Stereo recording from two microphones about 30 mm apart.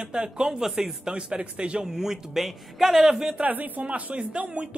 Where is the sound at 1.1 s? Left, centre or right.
Right.